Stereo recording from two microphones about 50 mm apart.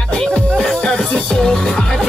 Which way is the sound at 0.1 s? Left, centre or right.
Left.